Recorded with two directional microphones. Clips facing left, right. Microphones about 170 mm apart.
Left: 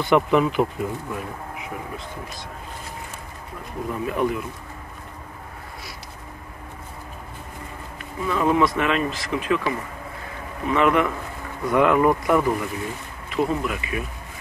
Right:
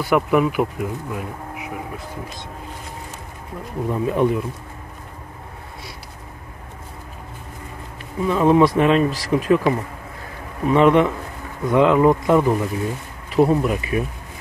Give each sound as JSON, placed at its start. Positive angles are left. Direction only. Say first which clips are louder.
{"t": 0.0, "sound": "speech", "louder": "right 1 dB", "side_deg": -10}
{"t": 3.9, "sound": "speech", "louder": "right 5 dB", "side_deg": -30}
{"t": 8.3, "sound": "speech", "louder": "right 5 dB", "side_deg": -30}
{"t": 10.7, "sound": "speech", "louder": "right 5 dB", "side_deg": -30}
{"t": 13.4, "sound": "speech", "louder": "right 7 dB", "side_deg": -35}